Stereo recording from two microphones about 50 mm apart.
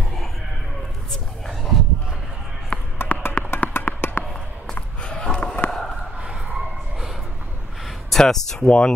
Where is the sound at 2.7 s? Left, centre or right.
Centre.